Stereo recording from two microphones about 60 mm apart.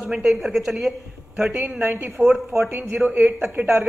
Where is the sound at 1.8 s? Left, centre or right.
Right.